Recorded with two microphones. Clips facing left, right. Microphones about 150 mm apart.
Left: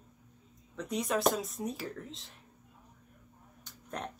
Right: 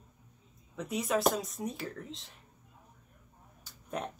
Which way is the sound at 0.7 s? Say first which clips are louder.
Right 1 dB; 5° right (ahead or behind).